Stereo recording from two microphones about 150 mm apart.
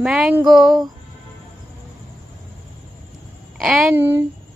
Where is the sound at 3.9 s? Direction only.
15° right (ahead or behind).